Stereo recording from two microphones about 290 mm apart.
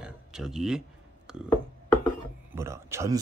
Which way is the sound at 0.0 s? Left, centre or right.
Centre.